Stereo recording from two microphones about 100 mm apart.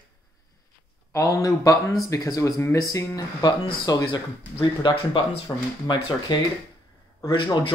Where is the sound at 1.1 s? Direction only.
35° left (ahead or behind); by 5.2 s 50° left (ahead or behind).